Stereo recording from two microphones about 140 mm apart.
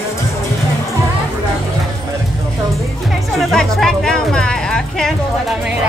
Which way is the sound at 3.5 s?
5° left (ahead or behind).